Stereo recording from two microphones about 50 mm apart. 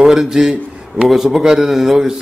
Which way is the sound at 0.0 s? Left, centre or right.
Centre.